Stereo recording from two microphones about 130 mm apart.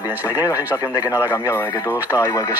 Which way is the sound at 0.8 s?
30° left (ahead or behind).